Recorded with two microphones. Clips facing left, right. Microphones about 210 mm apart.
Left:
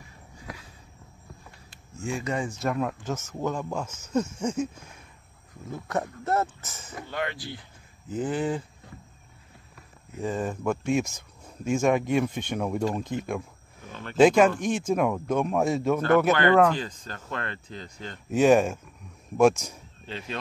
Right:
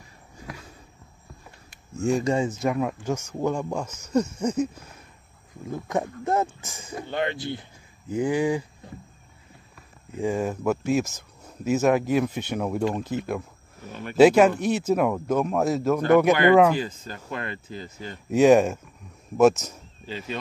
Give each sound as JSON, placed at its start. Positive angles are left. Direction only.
{"t": 2.0, "sound": "speech", "side_deg": -40}
{"t": 2.5, "sound": "speech", "side_deg": -5}
{"t": 3.8, "sound": "speech", "side_deg": 5}
{"t": 5.7, "sound": "speech", "side_deg": -15}
{"t": 7.0, "sound": "speech", "side_deg": -25}
{"t": 8.1, "sound": "speech", "side_deg": -10}
{"t": 10.1, "sound": "speech", "side_deg": -10}
{"t": 16.0, "sound": "speech", "side_deg": -15}
{"t": 20.1, "sound": "speech", "side_deg": -5}